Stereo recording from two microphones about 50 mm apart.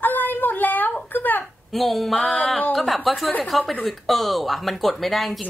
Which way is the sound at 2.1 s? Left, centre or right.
Left.